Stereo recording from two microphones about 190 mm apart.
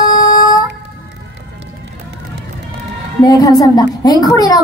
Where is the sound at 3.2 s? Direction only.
20° left (ahead or behind).